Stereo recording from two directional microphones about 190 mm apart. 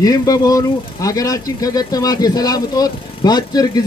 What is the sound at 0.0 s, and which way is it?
Speech, 20° left (ahead or behind).